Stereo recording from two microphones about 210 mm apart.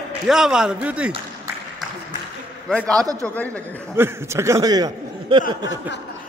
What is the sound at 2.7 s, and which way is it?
Speech, 5° left (ahead or behind).